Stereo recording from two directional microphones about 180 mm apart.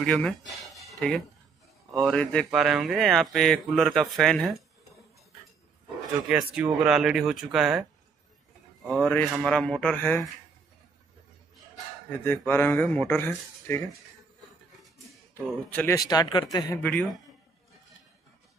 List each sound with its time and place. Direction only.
0.0 s a man's voice: 5° left (ahead or behind)
0.7 s a sound: centre (ahead or behind)
2.0 s a man's voice: 5° left (ahead or behind)
6.2 s a man's voice: 5° right (ahead or behind)
8.8 s a man's voice: 10° right (ahead or behind); by 10.2 s 10° left (ahead or behind)
12.3 s speech: 10° left (ahead or behind)
15.7 s speech: 10° left (ahead or behind)
16.8 s a man's voice: 5° left (ahead or behind)